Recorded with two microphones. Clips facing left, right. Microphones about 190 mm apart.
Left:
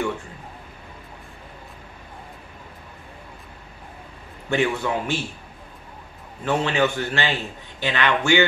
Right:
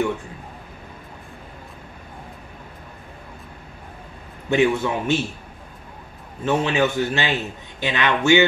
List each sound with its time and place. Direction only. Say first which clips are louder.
4.5 s a man's voice: right 4 dB; 20° right (ahead or behind)
6.4 s a man's voice: right 1 dB; 15° right (ahead or behind)